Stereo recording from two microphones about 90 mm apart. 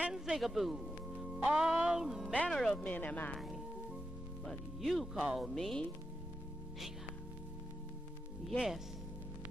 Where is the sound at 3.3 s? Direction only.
Centre (ahead or behind).